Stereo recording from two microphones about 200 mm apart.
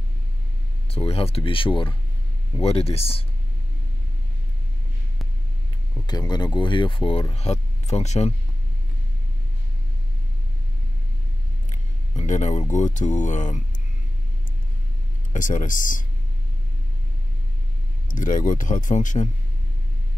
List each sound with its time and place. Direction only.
0.8 s speech: 30° left (ahead or behind)
6.0 s speech: 20° left (ahead or behind)
12.2 s speech: 35° left (ahead or behind)
15.3 s speech: 40° left (ahead or behind)
18.0 s speech: 40° left (ahead or behind)